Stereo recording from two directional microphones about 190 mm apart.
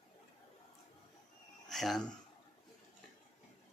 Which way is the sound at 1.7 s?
Centre (ahead or behind).